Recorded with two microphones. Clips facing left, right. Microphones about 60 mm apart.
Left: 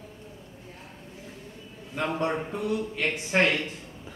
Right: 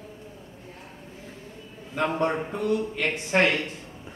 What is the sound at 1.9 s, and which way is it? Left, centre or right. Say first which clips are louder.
A man's voice: right 3 dB; centre.